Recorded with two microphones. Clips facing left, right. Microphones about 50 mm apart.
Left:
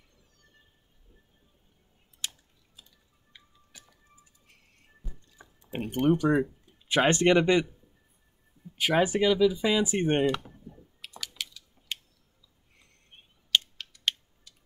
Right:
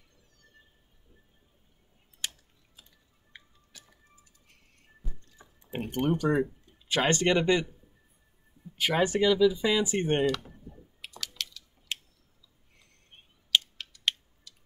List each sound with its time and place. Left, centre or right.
2.2 s typing: right
5.4 s a sound: centre
5.8 s speech: centre
6.9 s speech: centre
8.7 s speech: centre
11.1 s a sound: centre
13.5 s typing: centre